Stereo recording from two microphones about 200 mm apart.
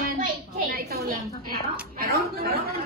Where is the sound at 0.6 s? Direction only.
50° right (ahead or behind).